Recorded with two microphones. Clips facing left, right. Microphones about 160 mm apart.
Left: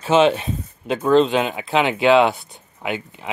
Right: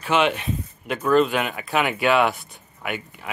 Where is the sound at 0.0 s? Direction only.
30° left (ahead or behind).